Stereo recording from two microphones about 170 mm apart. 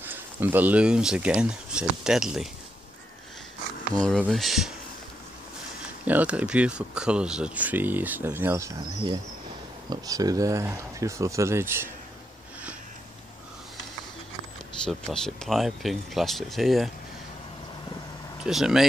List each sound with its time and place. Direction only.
0.0 s speech: 10° right (ahead or behind)
4.3 s speech: centre (ahead or behind)
6.0 s speech: 10° right (ahead or behind)
14.9 s speech: centre (ahead or behind)
18.4 s speech: 5° right (ahead or behind)